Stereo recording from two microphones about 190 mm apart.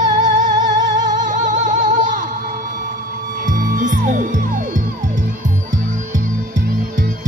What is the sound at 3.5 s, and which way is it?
Music, 45° right (ahead or behind).